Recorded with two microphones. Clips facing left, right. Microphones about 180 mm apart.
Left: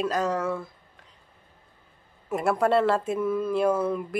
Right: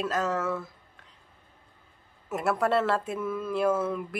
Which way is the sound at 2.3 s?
Centre (ahead or behind).